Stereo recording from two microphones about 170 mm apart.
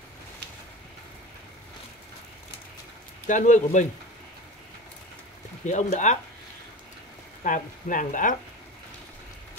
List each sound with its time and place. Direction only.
3.3 s speech: 45° left (ahead or behind)
5.7 s speech: 45° left (ahead or behind)
7.4 s speech: 50° left (ahead or behind)